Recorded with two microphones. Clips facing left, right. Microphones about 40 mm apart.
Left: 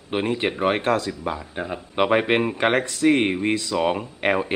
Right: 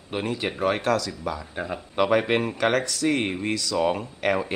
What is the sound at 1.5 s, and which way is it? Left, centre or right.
Speech, centre.